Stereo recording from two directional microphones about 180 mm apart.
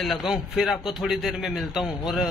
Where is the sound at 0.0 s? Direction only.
Centre (ahead or behind).